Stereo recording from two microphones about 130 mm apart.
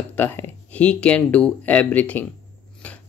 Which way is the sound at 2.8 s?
10° left (ahead or behind).